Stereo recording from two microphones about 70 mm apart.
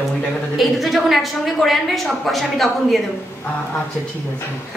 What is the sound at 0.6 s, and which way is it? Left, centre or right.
A woman's voice, centre.